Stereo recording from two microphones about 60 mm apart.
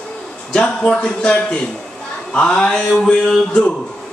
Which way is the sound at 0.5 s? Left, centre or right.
Centre.